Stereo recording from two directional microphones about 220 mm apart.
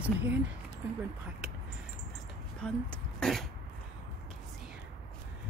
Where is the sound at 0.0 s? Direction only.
10° right (ahead or behind).